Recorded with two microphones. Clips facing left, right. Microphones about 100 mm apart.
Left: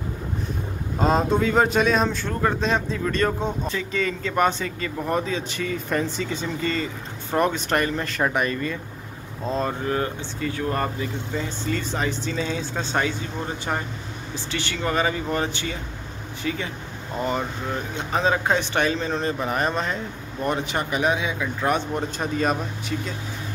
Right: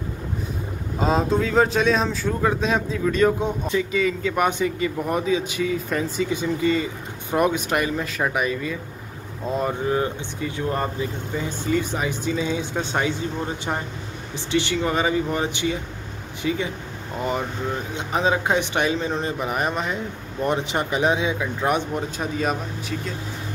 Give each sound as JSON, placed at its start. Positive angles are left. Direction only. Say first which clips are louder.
{"t": 0.9, "sound": "speech", "louder": "even", "side_deg": 0}
{"t": 14.3, "sound": "speech", "louder": "right 7 dB", "side_deg": -20}
{"t": 17.9, "sound": "speech", "louder": "even", "side_deg": -15}
{"t": 21.9, "sound": "speech", "louder": "even", "side_deg": -5}